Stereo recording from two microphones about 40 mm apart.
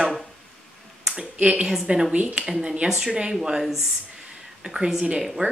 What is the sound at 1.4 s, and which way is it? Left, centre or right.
Speech, right.